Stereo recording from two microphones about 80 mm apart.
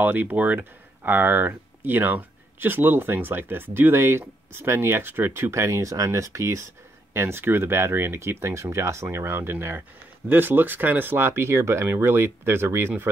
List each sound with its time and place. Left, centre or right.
0.0 s speech: right